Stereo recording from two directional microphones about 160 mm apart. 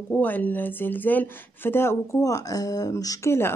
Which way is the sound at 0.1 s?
10° left (ahead or behind).